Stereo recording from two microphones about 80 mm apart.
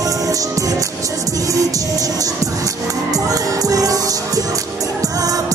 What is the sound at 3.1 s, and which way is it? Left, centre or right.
Music, right.